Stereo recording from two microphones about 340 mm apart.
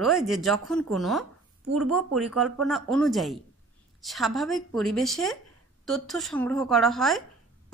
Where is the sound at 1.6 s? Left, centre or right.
Right.